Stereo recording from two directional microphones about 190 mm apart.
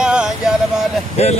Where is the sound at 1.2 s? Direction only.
35° left (ahead or behind).